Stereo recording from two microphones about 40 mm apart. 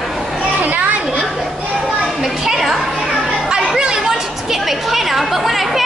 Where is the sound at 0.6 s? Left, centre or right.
Right.